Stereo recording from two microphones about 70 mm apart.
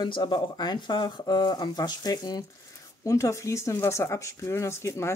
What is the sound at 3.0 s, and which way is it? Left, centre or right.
Speech, left.